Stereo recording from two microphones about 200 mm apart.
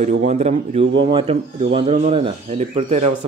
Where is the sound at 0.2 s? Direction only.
35° right (ahead or behind).